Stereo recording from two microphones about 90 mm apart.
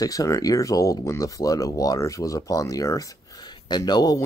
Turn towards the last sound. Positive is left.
turn(degrees=45)  # may be behind; listen again after turning